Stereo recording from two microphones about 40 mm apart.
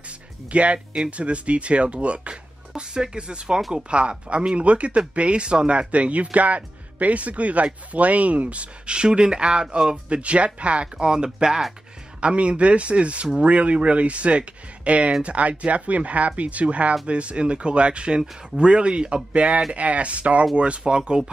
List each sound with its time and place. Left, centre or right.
0.5 s speech: right; by 11.6 s centre
12.2 s speech: right